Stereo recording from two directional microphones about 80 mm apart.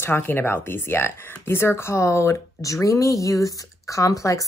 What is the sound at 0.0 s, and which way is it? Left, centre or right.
Speech, left.